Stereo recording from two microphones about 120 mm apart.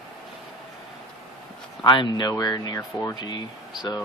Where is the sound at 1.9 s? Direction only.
40° left (ahead or behind).